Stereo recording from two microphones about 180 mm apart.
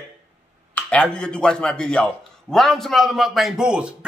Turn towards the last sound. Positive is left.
turn(degrees=-5)  # may be behind; listen again after turning